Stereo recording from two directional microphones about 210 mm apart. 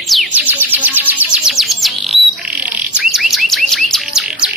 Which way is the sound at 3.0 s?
Centre (ahead or behind).